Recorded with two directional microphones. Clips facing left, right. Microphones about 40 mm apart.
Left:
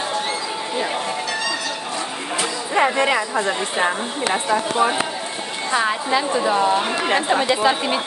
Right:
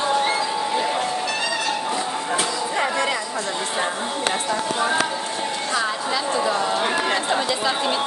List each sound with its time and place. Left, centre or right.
7.2 s speech: left